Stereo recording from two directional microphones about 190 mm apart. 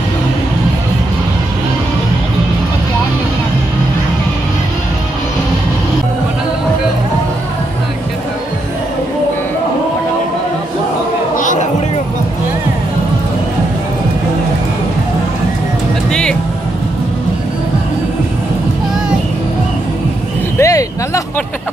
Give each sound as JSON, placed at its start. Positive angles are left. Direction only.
{"t": 11.3, "sound": "music", "side_deg": 40}
{"t": 16.1, "sound": "music", "side_deg": 5}
{"t": 20.5, "sound": "a sound", "side_deg": 15}